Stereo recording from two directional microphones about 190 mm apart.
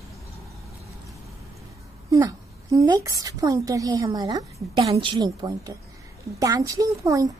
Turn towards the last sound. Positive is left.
turn(degrees=-20)  # may be behind; listen again after turning